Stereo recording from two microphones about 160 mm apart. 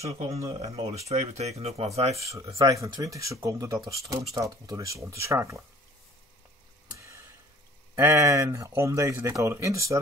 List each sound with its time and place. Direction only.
0.0 s speech: 40° right (ahead or behind)
2.1 s speech: 20° right (ahead or behind)
7.0 s a sound: 15° right (ahead or behind)
7.9 s speech: 15° right (ahead or behind)